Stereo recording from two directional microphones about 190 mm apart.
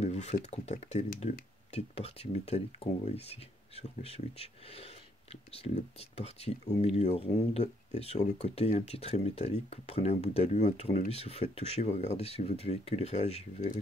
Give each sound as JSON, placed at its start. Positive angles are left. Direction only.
{"t": 0.0, "sound": "speech", "side_deg": 35}